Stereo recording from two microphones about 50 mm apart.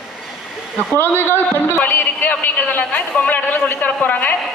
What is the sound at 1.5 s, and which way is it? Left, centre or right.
A man's voice, left.